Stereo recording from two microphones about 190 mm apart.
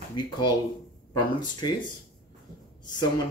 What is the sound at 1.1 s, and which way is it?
Speech, 20° left (ahead or behind).